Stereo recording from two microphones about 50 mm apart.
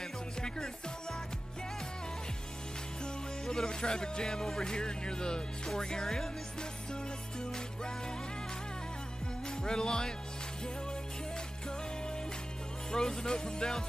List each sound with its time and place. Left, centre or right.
0.4 s music: centre
3.0 s music: centre
5.7 s speech: centre
6.9 s music: centre
9.5 s music: centre
12.9 s speech: centre